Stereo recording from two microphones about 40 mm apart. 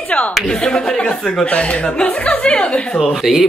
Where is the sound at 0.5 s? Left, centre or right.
Centre.